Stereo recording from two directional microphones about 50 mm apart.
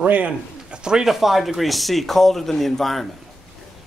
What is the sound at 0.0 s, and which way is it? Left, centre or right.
Speech, right.